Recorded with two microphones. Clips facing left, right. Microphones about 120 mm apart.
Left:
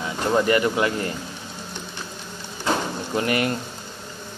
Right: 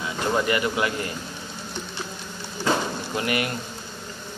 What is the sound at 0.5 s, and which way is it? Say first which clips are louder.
Speech: left 4 dB; 30° left (ahead or behind).